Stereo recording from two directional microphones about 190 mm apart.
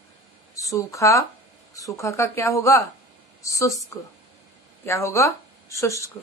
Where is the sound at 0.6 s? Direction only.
15° left (ahead or behind).